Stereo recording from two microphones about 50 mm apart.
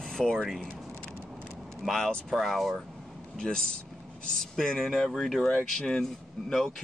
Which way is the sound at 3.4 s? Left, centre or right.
Centre.